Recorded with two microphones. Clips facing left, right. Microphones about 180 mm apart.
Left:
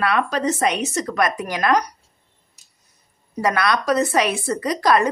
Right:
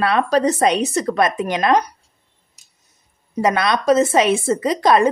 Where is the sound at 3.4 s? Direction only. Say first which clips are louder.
Right 2 dB; 20° right (ahead or behind).